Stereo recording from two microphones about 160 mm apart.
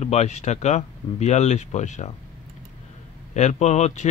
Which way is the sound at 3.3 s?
45° left (ahead or behind).